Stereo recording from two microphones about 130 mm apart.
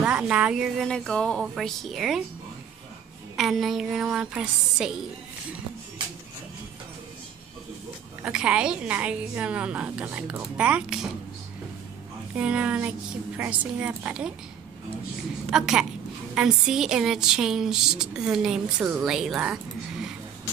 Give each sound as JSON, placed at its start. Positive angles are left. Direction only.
{"t": 0.0, "sound": "a woman's voice", "side_deg": -10}
{"t": 0.8, "sound": "speech", "side_deg": 5}
{"t": 3.3, "sound": "speech", "side_deg": 0}
{"t": 8.2, "sound": "a woman's voice", "side_deg": -10}
{"t": 12.4, "sound": "a woman's voice", "side_deg": -10}
{"t": 15.5, "sound": "speech", "side_deg": -5}